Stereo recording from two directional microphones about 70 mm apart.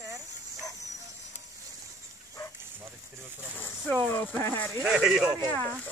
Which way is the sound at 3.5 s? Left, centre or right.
Left.